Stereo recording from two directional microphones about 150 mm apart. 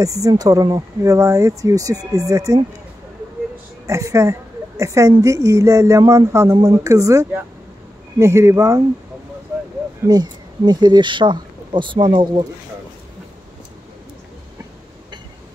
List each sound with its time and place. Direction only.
0.0 s speech: 20° right (ahead or behind)
3.8 s a woman's voice: 20° right (ahead or behind)
10.0 s speech: 25° right (ahead or behind)